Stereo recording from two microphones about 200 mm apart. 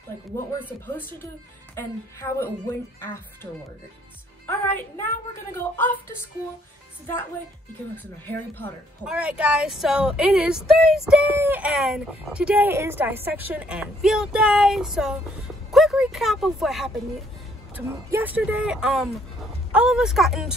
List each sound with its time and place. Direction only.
1.8 s a woman's voice: 15° left (ahead or behind)
4.5 s a woman's voice: 10° left (ahead or behind)
7.9 s a woman's voice: 10° left (ahead or behind)
9.0 s speech: 5° right (ahead or behind)